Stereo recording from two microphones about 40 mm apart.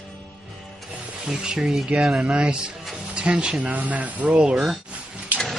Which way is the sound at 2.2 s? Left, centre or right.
Right.